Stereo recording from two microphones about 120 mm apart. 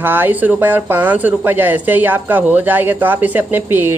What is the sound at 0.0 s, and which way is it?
Speech, 15° right (ahead or behind).